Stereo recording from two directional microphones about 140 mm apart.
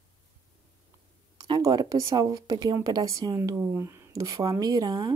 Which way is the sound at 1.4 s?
25° right (ahead or behind).